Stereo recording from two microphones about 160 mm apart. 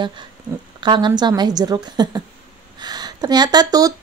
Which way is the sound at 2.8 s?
25° right (ahead or behind).